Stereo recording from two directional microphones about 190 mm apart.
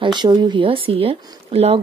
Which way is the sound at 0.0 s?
25° right (ahead or behind).